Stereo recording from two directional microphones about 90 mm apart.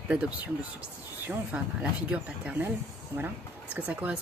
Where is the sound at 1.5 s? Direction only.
15° right (ahead or behind).